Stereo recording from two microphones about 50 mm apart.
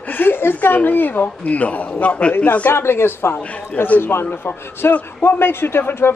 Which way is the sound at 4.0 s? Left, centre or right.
Left.